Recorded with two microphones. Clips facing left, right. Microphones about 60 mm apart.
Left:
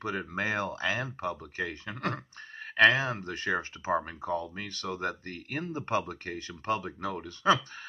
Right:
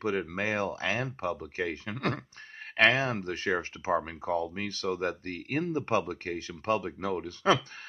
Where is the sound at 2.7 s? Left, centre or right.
Right.